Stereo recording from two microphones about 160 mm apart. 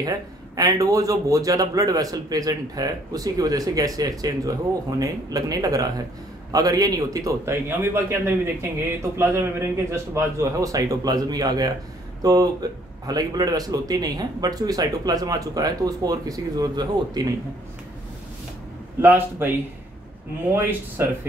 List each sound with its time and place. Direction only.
0.6 s a man's voice: 20° right (ahead or behind)
18.9 s speech: 10° right (ahead or behind)